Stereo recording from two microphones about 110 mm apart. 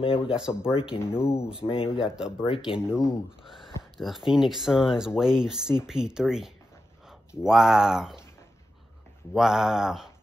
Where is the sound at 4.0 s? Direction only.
Centre (ahead or behind).